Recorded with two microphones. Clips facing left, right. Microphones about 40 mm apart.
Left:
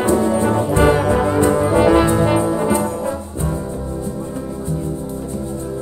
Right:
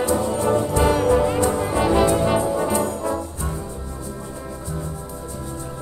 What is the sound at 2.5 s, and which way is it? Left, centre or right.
Brass instrument, centre.